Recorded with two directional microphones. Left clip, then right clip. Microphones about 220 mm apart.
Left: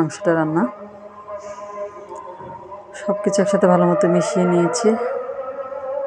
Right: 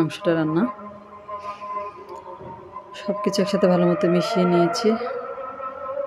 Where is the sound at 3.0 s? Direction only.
Centre (ahead or behind).